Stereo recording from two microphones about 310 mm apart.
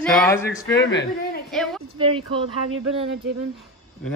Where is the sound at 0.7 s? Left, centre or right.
Left.